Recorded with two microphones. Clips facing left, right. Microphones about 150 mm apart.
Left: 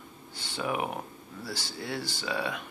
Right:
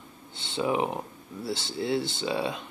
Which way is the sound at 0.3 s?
25° right (ahead or behind).